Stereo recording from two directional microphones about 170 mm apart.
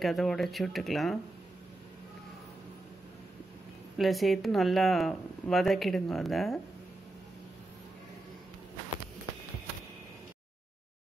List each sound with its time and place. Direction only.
0.0 s speech: centre (ahead or behind)
4.0 s speech: centre (ahead or behind)